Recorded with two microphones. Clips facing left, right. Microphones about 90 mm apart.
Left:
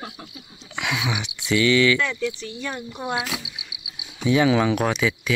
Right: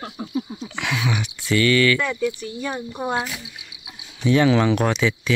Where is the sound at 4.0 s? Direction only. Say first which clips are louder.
Right 1 dB; 10° left (ahead or behind).